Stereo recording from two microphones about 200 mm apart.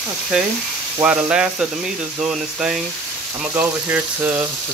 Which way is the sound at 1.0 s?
5° right (ahead or behind).